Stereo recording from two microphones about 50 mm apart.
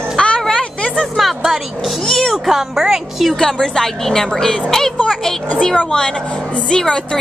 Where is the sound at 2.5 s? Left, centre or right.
Centre.